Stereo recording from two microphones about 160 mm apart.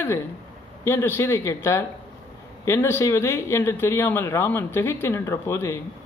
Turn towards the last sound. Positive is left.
turn(degrees=15)  # may be behind; listen again after turning